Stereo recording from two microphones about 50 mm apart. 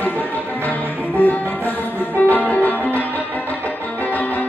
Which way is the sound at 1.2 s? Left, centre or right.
Left.